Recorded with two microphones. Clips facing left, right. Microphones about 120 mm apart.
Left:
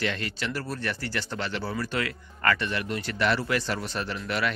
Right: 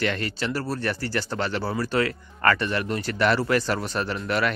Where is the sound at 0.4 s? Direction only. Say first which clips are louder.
Right 5 dB; 35° right (ahead or behind).